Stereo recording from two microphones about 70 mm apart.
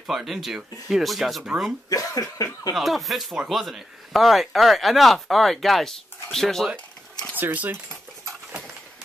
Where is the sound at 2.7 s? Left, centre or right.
Centre.